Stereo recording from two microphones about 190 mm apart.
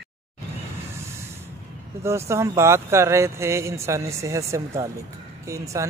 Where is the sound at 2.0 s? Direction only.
15° right (ahead or behind).